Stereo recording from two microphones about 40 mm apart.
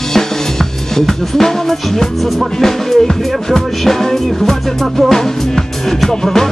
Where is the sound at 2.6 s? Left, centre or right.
Centre.